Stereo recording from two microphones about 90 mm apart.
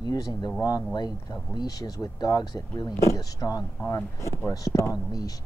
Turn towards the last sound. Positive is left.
turn(degrees=45)  # may be behind; listen again after turning